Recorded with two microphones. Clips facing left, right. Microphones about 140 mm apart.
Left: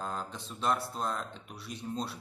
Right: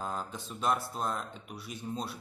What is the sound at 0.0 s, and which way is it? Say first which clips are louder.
Speech: right 1 dB; 5° right (ahead or behind).